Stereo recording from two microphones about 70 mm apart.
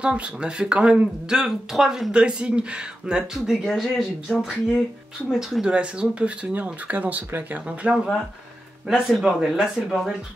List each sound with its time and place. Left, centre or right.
0.0 s speech: centre
3.3 s speech: centre